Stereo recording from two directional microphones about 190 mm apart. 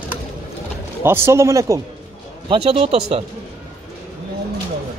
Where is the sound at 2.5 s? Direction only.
30° right (ahead or behind).